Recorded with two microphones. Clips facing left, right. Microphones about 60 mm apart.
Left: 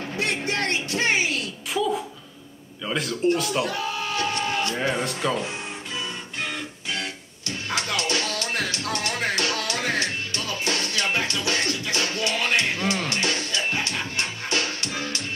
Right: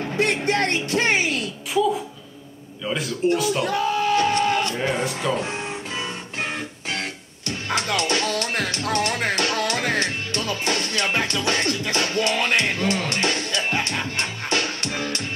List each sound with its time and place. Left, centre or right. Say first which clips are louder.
0.2 s a woman's voice: right 5 dB; right
2.8 s a man's voice: right 1 dB; centre
3.6 s a sound: right 6 dB; right
4.7 s a man's voice: right 1 dB; centre
7.4 s music: right 3 dB; right